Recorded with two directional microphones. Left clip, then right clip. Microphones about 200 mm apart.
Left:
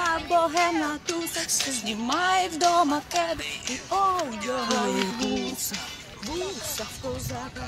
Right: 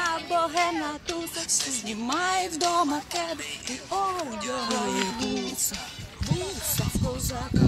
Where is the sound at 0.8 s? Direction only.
45° left (ahead or behind).